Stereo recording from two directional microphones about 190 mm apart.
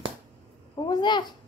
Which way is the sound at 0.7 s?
20° left (ahead or behind).